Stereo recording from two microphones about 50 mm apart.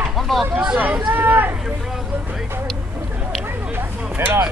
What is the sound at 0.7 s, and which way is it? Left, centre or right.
Speech, right.